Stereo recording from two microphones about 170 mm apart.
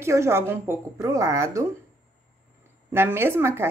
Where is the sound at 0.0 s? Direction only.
15° right (ahead or behind).